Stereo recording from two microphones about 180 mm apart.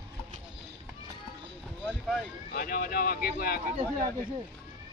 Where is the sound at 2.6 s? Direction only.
55° left (ahead or behind).